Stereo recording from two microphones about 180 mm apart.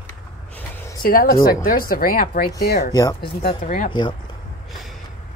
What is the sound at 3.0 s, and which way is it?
Speech, 20° left (ahead or behind).